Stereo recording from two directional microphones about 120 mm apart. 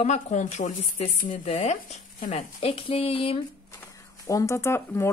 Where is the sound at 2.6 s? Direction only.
55° left (ahead or behind).